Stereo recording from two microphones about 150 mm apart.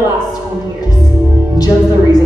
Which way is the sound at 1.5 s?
25° left (ahead or behind).